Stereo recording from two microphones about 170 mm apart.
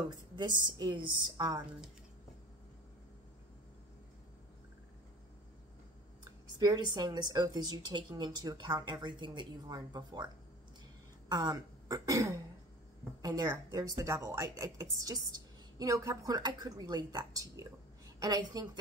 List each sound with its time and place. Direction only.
0.1 s a woman's voice: 25° right (ahead or behind)
6.6 s a woman's voice: 25° right (ahead or behind)